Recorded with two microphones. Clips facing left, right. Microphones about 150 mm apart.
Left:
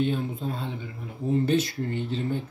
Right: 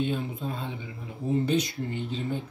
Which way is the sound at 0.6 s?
15° right (ahead or behind).